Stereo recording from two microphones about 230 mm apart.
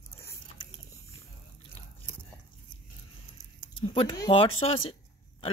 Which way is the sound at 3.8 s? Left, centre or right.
Left.